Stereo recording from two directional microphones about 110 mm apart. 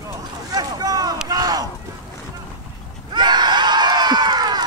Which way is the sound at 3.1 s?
40° right (ahead or behind).